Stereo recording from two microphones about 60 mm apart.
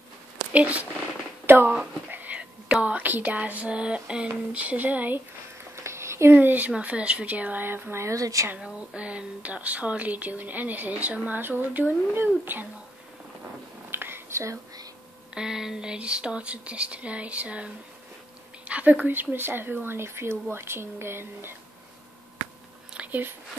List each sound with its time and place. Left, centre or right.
0.5 s speech: right
1.4 s a sound: right
2.0 s whispering: right
3.0 s speech: right
5.9 s a sound: right
6.3 s speech: right
8.0 s speech: right
8.5 s speech: centre; by 12.7 s right
13.8 s a sound: right
14.4 s speech: right
15.3 s speech: centre
18.7 s speech: right
22.9 s a sound: right